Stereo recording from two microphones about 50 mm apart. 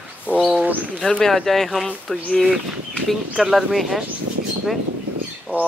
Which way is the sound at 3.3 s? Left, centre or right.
Centre.